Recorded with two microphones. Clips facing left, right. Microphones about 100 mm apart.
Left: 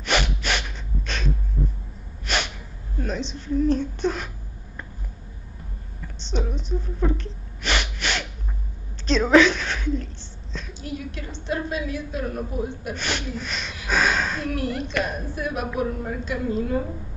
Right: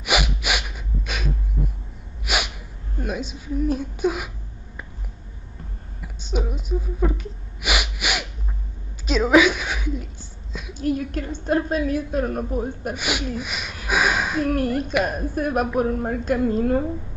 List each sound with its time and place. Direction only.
0.0 s snort: 10° right (ahead or behind)
3.0 s a woman's voice: 10° right (ahead or behind)
6.2 s gasp: 10° right (ahead or behind)
9.0 s a woman's voice: 10° right (ahead or behind)
10.7 s a woman's voice: 50° right (ahead or behind)
12.9 s speech: 10° right (ahead or behind)
13.8 s a sound: 10° right (ahead or behind)
14.4 s a woman's voice: 45° right (ahead or behind)